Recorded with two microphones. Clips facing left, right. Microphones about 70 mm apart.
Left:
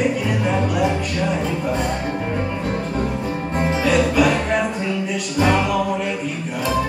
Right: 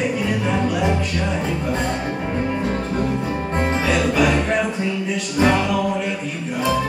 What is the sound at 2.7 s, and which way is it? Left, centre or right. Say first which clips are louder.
Music: right 1 dB; centre.